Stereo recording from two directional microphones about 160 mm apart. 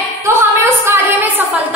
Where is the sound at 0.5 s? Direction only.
15° right (ahead or behind).